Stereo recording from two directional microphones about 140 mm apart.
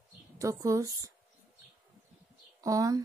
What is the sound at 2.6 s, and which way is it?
Speech, 25° right (ahead or behind).